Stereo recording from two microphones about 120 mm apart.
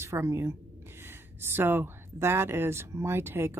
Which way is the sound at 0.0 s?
20° right (ahead or behind).